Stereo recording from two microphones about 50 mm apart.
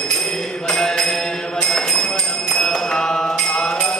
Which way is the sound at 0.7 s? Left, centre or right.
Centre.